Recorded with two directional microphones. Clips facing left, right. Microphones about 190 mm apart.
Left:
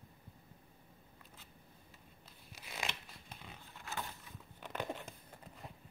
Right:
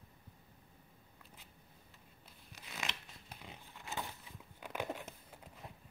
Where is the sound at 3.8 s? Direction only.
15° right (ahead or behind).